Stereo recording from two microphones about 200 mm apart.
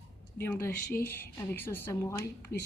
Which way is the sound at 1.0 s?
10° left (ahead or behind).